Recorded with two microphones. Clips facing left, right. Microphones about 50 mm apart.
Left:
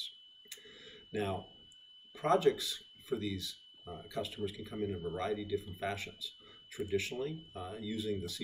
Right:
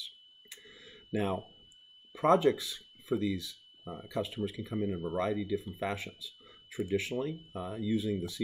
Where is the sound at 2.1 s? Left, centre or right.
Right.